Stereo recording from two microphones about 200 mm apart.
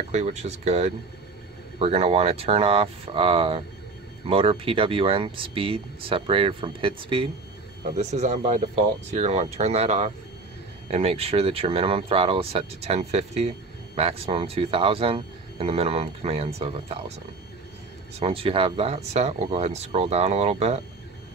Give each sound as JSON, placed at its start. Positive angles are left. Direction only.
{"t": 0.1, "sound": "speech", "side_deg": -35}
{"t": 18.2, "sound": "speech", "side_deg": -25}